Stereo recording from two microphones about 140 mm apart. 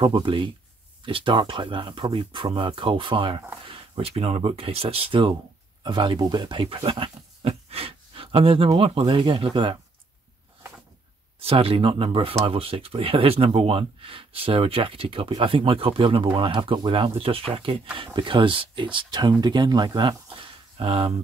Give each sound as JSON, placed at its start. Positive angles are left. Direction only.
{"t": 0.0, "sound": "speech", "side_deg": -35}
{"t": 9.0, "sound": "speech", "side_deg": -35}
{"t": 11.3, "sound": "speech", "side_deg": -45}